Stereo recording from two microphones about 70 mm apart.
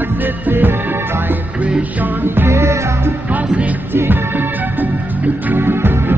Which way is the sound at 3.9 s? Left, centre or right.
Right.